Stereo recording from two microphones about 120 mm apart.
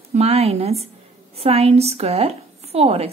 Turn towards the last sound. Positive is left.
turn(degrees=-55)  # may be behind; listen again after turning